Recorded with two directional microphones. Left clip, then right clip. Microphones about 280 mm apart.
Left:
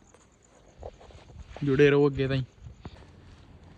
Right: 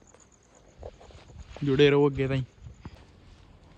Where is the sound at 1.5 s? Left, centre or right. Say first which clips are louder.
Even; centre.